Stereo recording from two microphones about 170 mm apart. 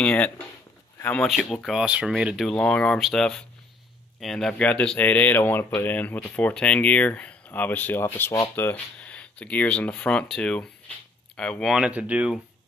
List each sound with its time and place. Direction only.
0.0 s speech: 5° left (ahead or behind)